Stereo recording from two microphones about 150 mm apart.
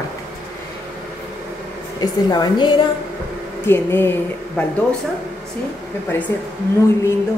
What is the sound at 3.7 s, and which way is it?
Speech, 15° left (ahead or behind).